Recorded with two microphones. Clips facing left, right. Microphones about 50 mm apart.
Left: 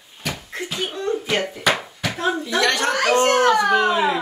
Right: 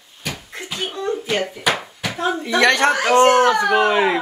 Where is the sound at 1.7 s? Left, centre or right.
Centre.